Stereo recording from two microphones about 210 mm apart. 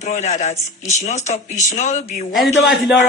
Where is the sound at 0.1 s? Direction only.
35° left (ahead or behind).